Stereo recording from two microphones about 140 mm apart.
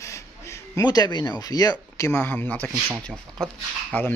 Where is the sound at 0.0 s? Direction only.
20° left (ahead or behind).